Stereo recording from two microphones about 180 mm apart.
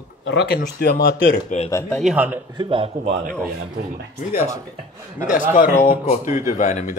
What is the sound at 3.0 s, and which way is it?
Speech, 45° right (ahead or behind).